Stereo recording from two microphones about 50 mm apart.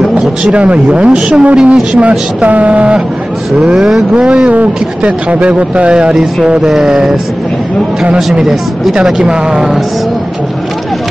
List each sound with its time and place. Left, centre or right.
0.4 s speech: right
8.4 s speech: centre